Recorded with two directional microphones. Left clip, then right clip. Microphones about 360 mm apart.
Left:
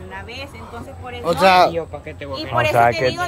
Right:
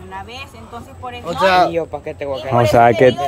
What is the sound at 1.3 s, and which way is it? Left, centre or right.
Speech, left.